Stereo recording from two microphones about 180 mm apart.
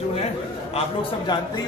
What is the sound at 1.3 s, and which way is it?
Speech, 25° left (ahead or behind).